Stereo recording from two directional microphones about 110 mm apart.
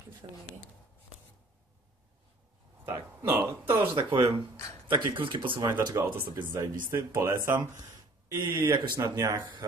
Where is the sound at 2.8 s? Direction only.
20° right (ahead or behind).